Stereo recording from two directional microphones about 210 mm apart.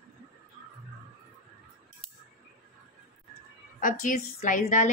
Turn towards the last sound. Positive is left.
turn(degrees=40)  # may be behind; listen again after turning